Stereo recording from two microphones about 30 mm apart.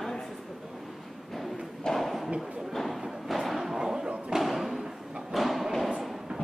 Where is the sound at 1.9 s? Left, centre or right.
Left.